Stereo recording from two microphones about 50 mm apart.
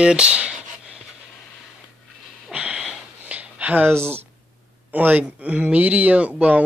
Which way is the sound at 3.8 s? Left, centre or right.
Right.